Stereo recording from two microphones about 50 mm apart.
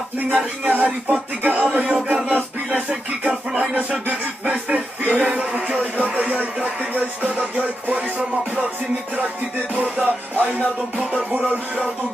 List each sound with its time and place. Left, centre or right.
0.7 s speech: right
3.3 s music: right
4.5 s speech: right
9.8 s music: right
10.3 s speech: right